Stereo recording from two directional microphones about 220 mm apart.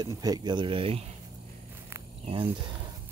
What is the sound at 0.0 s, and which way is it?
Speech, 15° right (ahead or behind).